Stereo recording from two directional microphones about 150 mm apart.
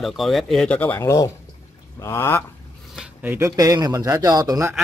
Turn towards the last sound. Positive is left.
turn(degrees=-25)  # may be behind; listen again after turning